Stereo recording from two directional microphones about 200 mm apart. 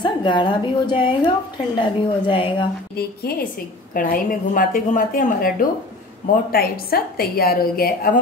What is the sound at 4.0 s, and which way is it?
A woman's voice, 45° left (ahead or behind).